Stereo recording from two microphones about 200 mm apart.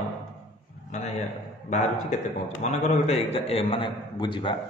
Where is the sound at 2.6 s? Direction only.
35° left (ahead or behind).